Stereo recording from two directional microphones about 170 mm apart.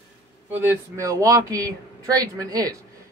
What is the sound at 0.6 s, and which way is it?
Speech, 20° right (ahead or behind).